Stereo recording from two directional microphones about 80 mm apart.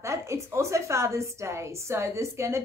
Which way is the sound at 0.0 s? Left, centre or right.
Right.